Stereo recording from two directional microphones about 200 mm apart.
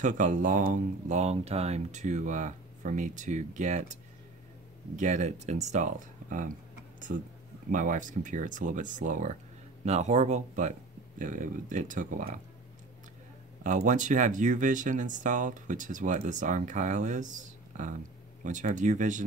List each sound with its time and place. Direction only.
0.0 s speech: 40° right (ahead or behind)
7.7 s speech: 40° right (ahead or behind)
13.7 s speech: 40° right (ahead or behind)